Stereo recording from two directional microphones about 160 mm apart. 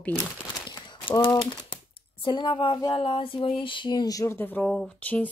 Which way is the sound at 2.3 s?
30° left (ahead or behind).